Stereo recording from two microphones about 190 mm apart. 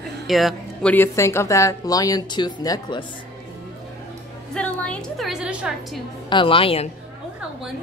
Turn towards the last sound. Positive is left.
turn(degrees=30)  # may be behind; listen again after turning